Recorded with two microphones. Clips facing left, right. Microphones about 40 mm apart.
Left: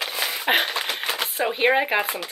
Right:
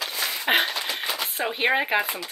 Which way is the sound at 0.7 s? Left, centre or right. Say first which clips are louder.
Left 2 dB; left.